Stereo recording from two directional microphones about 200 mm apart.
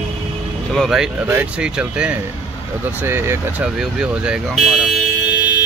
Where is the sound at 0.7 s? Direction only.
Centre (ahead or behind).